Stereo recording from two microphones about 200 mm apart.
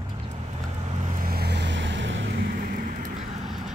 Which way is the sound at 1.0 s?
45° right (ahead or behind).